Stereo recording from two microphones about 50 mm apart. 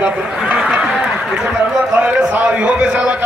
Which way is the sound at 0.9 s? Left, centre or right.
Centre.